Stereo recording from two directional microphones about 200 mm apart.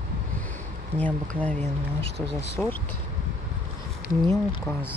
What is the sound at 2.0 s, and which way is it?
Speech, 30° right (ahead or behind).